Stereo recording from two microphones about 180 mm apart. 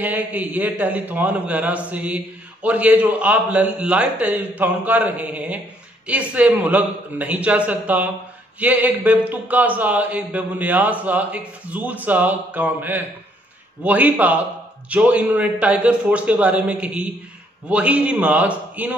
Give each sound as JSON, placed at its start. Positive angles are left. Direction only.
{"t": 0.0, "sound": "a man's voice", "side_deg": -10}